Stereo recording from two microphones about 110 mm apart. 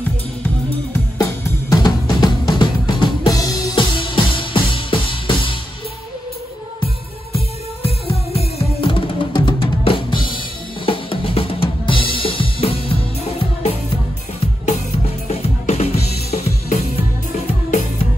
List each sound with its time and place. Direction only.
1.1 s drum kit: 35° left (ahead or behind)
2.6 s music: 35° left (ahead or behind)
3.7 s music: 50° left (ahead or behind)
7.3 s music: 60° left (ahead or behind)
9.8 s drum kit: 45° left (ahead or behind)
15.2 s drum kit: 80° left
17.5 s music: 75° left (ahead or behind)